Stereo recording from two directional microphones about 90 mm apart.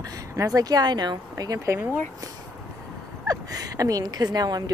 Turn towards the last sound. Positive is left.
turn(degrees=-45)  # may be behind; listen again after turning